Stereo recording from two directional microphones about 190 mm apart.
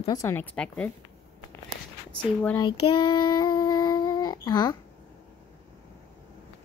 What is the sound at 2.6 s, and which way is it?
Child singing, 25° left (ahead or behind).